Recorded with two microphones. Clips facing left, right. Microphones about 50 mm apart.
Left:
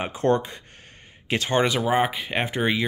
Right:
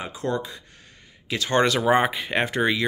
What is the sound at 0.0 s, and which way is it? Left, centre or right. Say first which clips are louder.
Speech: left 5 dB; left.